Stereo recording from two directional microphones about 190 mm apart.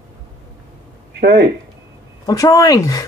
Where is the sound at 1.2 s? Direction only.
60° right (ahead or behind).